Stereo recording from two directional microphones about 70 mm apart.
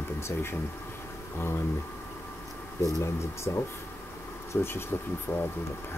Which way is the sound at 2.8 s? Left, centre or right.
Left.